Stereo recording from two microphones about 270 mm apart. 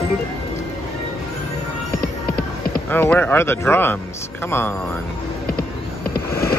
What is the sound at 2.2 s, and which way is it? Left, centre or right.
Music, left.